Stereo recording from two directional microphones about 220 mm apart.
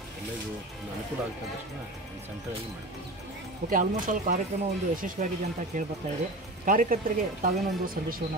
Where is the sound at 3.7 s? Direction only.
35° right (ahead or behind).